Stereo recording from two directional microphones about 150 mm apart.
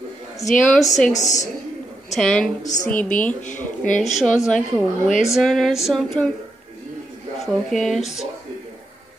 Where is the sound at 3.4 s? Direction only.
55° left (ahead or behind).